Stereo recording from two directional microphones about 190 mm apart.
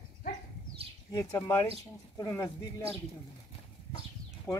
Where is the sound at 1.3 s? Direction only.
15° left (ahead or behind).